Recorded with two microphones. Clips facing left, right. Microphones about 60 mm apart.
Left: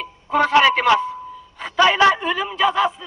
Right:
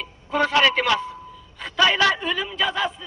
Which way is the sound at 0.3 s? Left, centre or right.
Centre.